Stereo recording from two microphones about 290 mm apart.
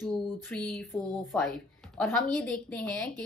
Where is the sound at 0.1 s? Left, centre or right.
Centre.